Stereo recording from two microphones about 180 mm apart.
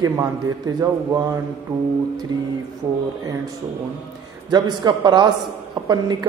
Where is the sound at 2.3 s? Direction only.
25° right (ahead or behind).